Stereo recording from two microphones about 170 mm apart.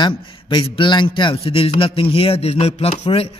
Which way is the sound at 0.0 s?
30° left (ahead or behind).